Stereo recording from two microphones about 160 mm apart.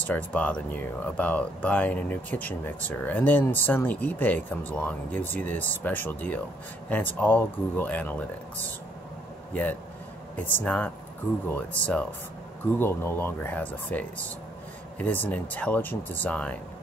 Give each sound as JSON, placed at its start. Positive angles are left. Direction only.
{"t": 0.0, "sound": "speech", "side_deg": 10}